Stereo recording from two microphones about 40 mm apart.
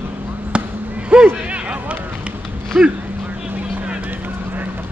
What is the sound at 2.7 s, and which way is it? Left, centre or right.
Speech, right.